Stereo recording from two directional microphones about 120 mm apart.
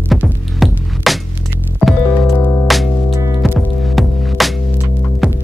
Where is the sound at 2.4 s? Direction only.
20° left (ahead or behind).